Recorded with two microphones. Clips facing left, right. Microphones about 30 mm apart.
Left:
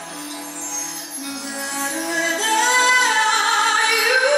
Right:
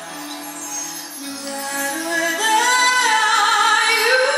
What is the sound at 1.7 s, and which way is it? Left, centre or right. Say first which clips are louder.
Music: right 2 dB; centre.